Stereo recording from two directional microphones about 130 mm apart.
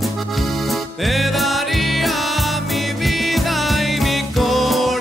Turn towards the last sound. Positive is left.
turn(degrees=0)  # may be behind; listen again after turning